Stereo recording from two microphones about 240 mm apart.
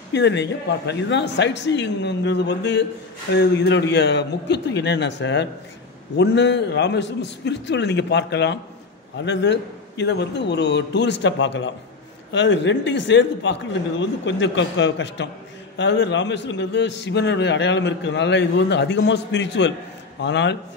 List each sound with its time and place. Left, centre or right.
0.1 s a man's voice: left